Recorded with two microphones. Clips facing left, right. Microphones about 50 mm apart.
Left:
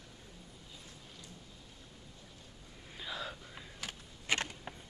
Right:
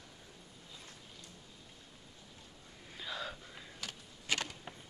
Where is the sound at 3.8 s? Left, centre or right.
Left.